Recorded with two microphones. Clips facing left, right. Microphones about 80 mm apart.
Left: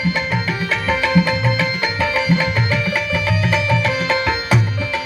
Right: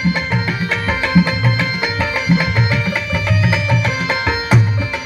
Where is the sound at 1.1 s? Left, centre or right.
Right.